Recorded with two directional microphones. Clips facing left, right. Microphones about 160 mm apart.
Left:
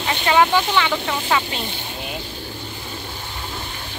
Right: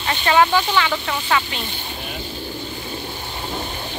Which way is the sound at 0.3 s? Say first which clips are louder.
Even; 15° left (ahead or behind).